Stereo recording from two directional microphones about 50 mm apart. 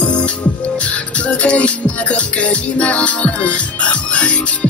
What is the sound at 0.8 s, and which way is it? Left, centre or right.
Music, left.